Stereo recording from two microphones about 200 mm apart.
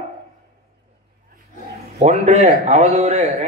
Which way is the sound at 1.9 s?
35° right (ahead or behind).